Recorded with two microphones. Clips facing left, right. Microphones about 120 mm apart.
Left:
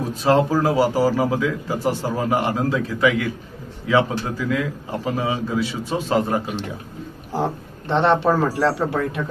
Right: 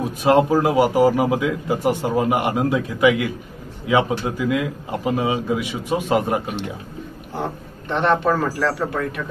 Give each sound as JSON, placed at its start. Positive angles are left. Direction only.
{"t": 0.2, "sound": "a man's voice", "side_deg": -15}
{"t": 7.3, "sound": "a man's voice", "side_deg": 30}